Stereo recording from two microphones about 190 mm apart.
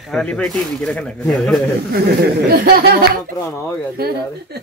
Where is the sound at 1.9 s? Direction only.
55° right (ahead or behind).